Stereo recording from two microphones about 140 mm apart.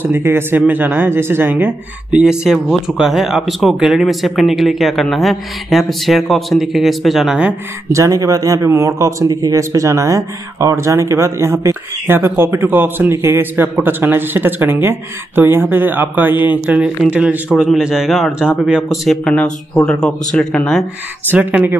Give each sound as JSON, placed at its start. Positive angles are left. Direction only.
{"t": 0.0, "sound": "speech", "side_deg": -15}
{"t": 7.9, "sound": "a man's voice", "side_deg": -20}
{"t": 19.0, "sound": "speech", "side_deg": 5}
{"t": 21.3, "sound": "a man's voice", "side_deg": -10}